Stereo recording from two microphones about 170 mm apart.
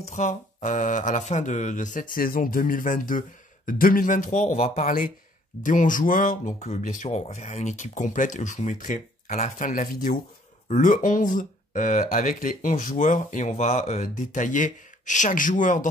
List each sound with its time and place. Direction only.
0.0 s speech: 45° left (ahead or behind)